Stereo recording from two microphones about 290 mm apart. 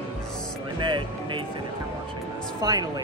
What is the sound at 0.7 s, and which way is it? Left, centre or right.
Speech, centre.